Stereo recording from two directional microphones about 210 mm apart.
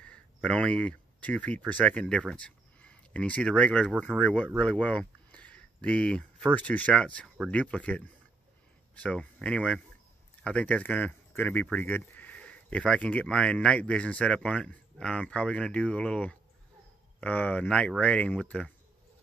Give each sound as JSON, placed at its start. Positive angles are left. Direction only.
{"t": 0.0, "sound": "speech", "side_deg": 5}